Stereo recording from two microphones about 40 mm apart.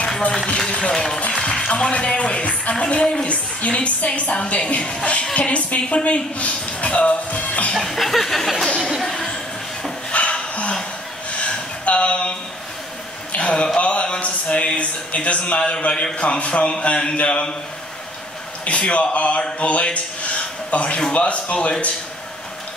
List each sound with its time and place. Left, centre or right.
0.6 s speech: left
1.3 s music: centre
1.7 s speech: left
7.7 s chuckle: centre
9.0 s speech: centre
10.1 s a sound: left
13.3 s speech: left
13.7 s a sound: left
14.8 s speech: left
18.7 s speech: left